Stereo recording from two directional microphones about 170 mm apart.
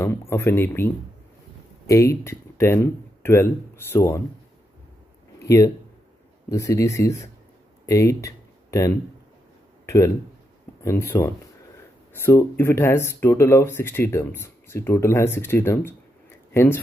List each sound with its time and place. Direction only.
0.0 s speech: 15° left (ahead or behind)
5.4 s speech: 20° left (ahead or behind)
7.8 s a sound: 20° left (ahead or behind)
9.8 s speech: 15° left (ahead or behind)